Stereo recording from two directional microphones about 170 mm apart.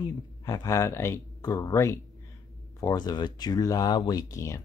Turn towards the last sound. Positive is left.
turn(degrees=20)  # may be behind; listen again after turning